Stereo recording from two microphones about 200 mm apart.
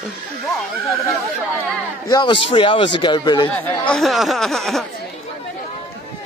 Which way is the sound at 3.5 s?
5° left (ahead or behind).